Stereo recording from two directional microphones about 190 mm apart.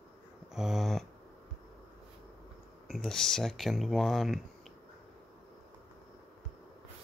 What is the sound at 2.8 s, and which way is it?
Speech, centre (ahead or behind).